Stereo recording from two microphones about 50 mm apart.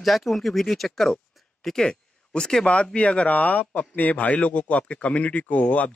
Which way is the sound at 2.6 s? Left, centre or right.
Left.